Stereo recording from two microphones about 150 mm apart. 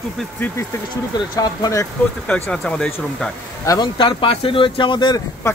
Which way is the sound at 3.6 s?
30° left (ahead or behind).